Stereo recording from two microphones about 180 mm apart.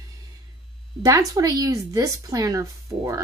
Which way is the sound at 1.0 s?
20° right (ahead or behind).